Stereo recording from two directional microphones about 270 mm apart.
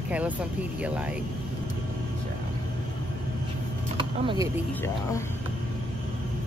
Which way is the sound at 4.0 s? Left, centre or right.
Centre.